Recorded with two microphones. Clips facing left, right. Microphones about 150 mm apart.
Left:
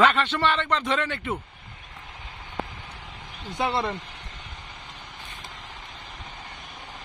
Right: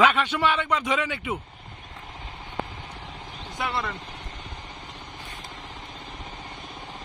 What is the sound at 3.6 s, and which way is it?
Speech, 25° left (ahead or behind).